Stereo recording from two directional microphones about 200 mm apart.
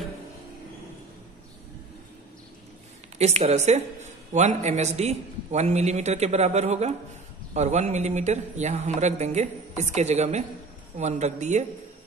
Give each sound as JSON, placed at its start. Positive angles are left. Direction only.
{"t": 3.2, "sound": "speech", "side_deg": -35}